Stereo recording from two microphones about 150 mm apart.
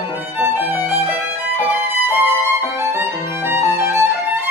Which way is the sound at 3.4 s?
15° right (ahead or behind).